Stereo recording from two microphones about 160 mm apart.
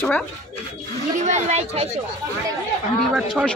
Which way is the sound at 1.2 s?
45° right (ahead or behind).